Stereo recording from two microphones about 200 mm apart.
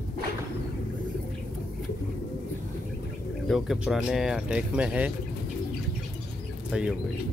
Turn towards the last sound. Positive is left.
turn(degrees=-5)  # may be behind; listen again after turning